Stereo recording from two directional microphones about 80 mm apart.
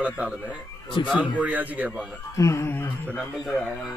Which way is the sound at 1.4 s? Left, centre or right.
Centre.